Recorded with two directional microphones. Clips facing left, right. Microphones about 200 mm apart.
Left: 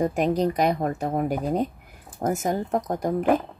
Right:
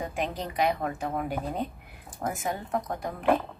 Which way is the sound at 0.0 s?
40° left (ahead or behind).